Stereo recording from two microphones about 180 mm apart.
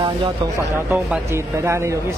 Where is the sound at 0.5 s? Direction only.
15° right (ahead or behind).